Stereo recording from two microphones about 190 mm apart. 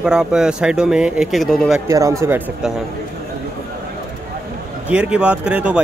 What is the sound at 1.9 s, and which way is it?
Speech, 15° right (ahead or behind).